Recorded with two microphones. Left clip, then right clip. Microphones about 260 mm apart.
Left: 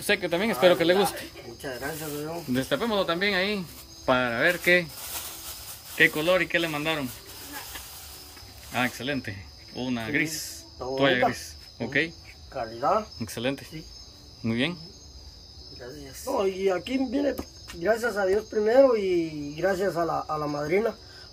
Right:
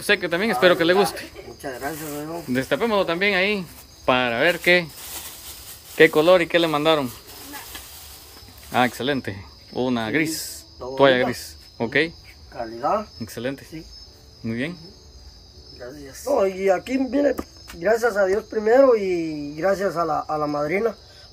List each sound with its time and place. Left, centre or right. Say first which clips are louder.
0.0 s speech: right 4 dB; centre
1.6 s speech: right 3 dB; centre
2.5 s speech: right 5 dB; centre
5.9 s speech: right 7 dB; centre
8.7 s speech: right 7 dB; centre
12.5 s speech: right 2 dB; centre
13.2 s speech: right 1 dB; centre
16.3 s speech: right 6 dB; centre